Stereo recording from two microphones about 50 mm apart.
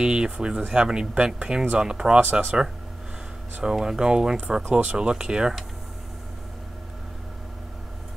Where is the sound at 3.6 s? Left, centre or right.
Centre.